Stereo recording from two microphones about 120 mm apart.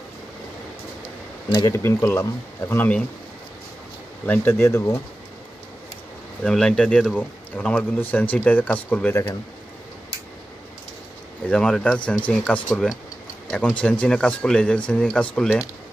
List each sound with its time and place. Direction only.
1.5 s a man's voice: 30° left (ahead or behind)
4.3 s speech: 20° left (ahead or behind)
6.4 s a man's voice: 5° left (ahead or behind)
11.4 s a man's voice: 5° left (ahead or behind)